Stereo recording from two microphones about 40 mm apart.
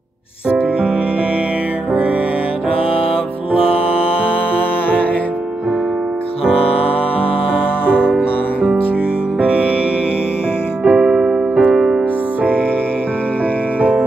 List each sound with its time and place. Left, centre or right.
0.5 s music: right
7.9 s music: right
9.4 s music: right
10.8 s music: centre
13.7 s music: right